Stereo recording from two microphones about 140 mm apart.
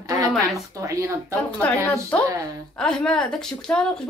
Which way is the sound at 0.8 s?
20° right (ahead or behind).